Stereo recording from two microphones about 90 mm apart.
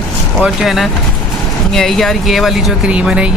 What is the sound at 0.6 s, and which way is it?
Speech, centre (ahead or behind).